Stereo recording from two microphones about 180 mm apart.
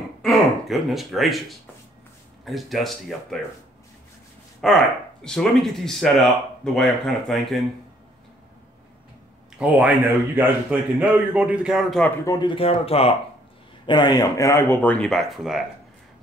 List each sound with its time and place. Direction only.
0.2 s speech: centre (ahead or behind)
4.6 s speech: centre (ahead or behind)
9.6 s a man's voice: 10° right (ahead or behind)
12.3 s speech: 25° left (ahead or behind); by 15.6 s centre (ahead or behind)